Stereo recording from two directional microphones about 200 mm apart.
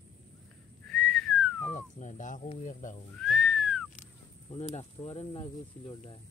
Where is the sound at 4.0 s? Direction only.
30° left (ahead or behind).